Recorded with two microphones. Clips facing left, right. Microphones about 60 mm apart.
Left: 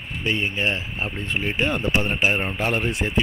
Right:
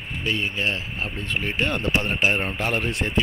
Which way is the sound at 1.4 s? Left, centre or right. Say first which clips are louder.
Left 1 dB; centre.